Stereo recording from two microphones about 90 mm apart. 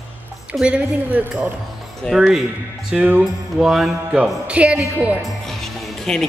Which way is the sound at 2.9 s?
15° right (ahead or behind).